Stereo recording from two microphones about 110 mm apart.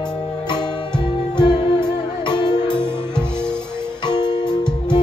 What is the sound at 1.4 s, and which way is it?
Music, 40° left (ahead or behind).